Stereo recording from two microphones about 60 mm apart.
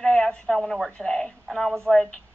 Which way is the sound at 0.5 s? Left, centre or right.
Centre.